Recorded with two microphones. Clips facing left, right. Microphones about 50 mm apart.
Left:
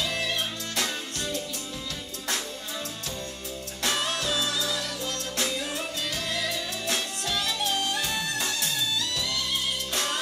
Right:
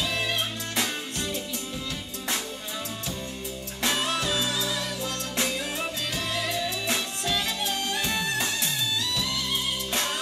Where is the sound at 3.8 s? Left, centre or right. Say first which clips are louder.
Right 2 dB; right.